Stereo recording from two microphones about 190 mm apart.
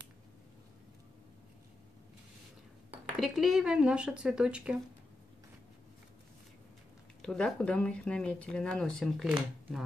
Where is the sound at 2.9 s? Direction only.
Centre (ahead or behind).